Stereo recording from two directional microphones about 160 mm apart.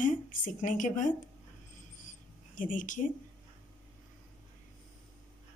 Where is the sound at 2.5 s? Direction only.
55° left (ahead or behind).